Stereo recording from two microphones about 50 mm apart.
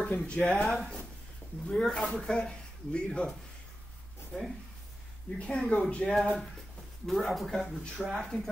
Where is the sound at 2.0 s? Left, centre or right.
Centre.